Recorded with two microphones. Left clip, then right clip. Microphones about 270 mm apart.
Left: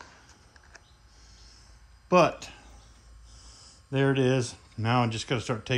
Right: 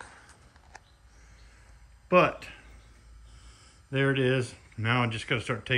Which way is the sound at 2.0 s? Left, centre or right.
Centre.